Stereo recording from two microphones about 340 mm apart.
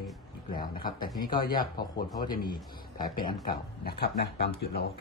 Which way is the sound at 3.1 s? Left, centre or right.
Left.